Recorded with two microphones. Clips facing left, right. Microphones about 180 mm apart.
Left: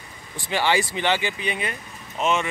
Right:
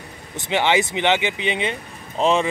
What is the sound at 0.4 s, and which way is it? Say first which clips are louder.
Speech: right 3 dB; 20° right (ahead or behind).